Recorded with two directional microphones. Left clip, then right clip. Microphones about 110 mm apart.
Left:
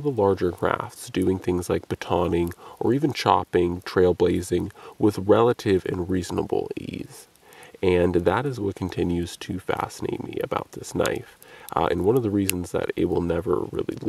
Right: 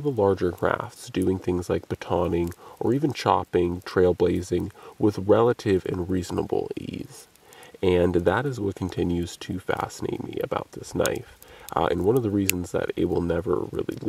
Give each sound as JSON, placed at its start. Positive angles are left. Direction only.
{"t": 0.0, "sound": "speech", "side_deg": 0}
{"t": 3.0, "sound": "speech", "side_deg": 5}
{"t": 11.7, "sound": "speech", "side_deg": 0}
{"t": 13.7, "sound": "speech", "side_deg": 0}